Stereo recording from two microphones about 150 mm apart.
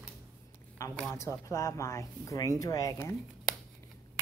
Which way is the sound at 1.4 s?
20° left (ahead or behind).